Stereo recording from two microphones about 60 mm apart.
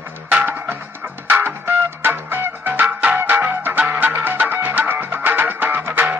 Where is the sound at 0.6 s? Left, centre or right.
Right.